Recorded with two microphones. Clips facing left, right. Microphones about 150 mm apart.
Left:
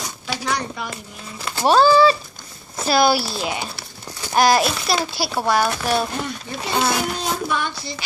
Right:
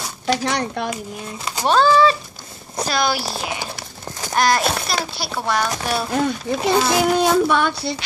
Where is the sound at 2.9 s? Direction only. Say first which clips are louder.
Left 5 dB; 10° left (ahead or behind).